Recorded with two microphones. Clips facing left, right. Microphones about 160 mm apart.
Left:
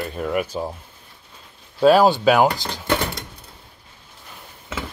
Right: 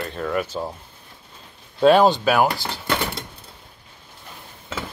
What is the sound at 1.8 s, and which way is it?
Speech, 5° left (ahead or behind).